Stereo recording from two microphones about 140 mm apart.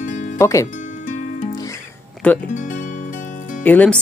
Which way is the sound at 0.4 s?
20° left (ahead or behind).